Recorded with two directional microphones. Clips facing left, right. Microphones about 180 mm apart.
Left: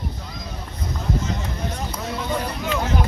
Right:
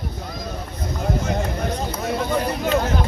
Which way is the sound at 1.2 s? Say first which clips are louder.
Right 4 dB; 55° right (ahead or behind).